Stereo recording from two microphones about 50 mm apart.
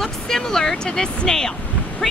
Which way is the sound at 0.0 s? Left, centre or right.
Centre.